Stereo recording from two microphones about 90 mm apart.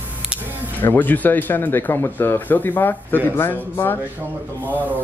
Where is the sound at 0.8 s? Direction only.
20° left (ahead or behind).